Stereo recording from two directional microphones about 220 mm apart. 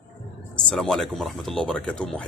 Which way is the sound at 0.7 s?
Centre (ahead or behind).